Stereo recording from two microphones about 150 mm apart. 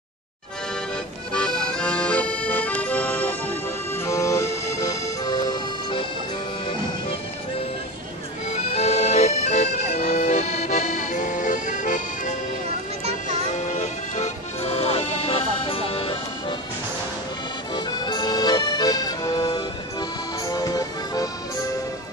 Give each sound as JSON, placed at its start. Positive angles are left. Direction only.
{"t": 1.3, "sound": "accordion", "side_deg": 5}
{"t": 8.5, "sound": "accordion", "side_deg": 45}
{"t": 13.5, "sound": "accordion", "side_deg": 55}
{"t": 17.7, "sound": "accordion", "side_deg": 30}